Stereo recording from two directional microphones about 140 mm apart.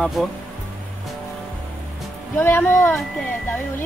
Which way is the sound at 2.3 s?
15° left (ahead or behind).